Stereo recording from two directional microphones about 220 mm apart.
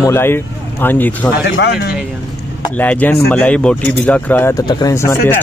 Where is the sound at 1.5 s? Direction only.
50° left (ahead or behind).